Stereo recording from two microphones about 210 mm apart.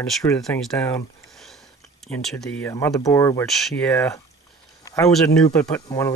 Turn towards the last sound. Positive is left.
turn(degrees=15)  # may be behind; listen again after turning